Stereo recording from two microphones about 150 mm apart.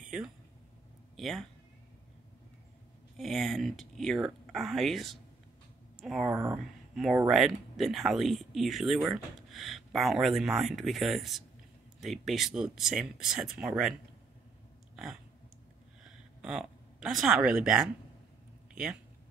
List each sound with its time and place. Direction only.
0.0 s a sound: 5° right (ahead or behind)
1.1 s speech: centre (ahead or behind)
3.2 s speech: centre (ahead or behind)
6.3 s speech: 20° right (ahead or behind)
7.2 s speech: centre (ahead or behind)
16.0 s a sound: 5° right (ahead or behind)